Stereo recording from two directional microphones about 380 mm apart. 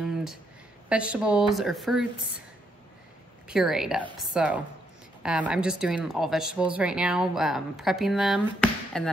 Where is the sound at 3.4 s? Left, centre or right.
Centre.